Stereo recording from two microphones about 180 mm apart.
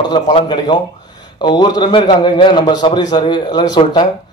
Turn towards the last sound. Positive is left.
turn(degrees=20)  # may be behind; listen again after turning